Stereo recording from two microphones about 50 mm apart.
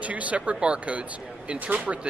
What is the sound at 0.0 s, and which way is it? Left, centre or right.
Speech, right.